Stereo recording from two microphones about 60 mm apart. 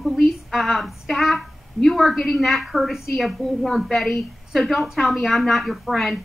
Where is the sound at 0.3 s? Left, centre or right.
Centre.